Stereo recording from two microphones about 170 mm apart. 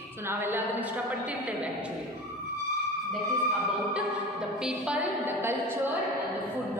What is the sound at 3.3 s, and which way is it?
Music, 35° right (ahead or behind).